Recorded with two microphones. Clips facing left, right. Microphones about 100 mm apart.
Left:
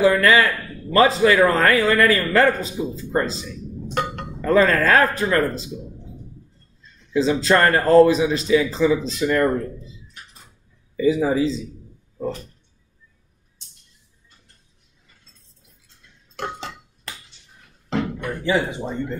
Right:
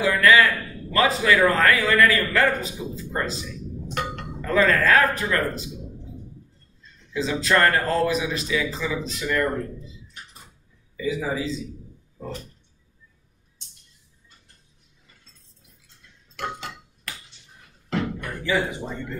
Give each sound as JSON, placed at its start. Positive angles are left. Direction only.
{"t": 0.0, "sound": "a sound", "side_deg": 35}
{"t": 0.9, "sound": "a man's voice", "side_deg": 35}
{"t": 7.2, "sound": "a man's voice", "side_deg": 30}
{"t": 11.0, "sound": "a man's voice", "side_deg": 35}
{"t": 16.3, "sound": "dishes", "side_deg": 30}
{"t": 17.8, "sound": "music", "side_deg": 25}